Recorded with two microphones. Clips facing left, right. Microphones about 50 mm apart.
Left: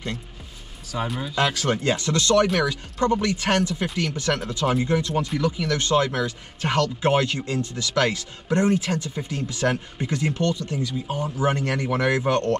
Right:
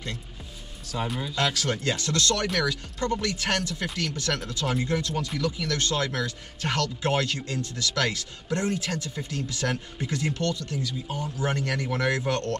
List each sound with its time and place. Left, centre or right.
1.0 s speech: centre
1.3 s speech: left
2.4 s speech: centre
2.7 s speech: left